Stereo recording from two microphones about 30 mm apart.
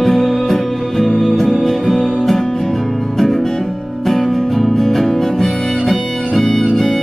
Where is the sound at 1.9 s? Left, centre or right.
Centre.